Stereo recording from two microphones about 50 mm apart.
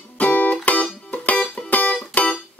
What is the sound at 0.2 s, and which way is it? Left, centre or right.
Music, left.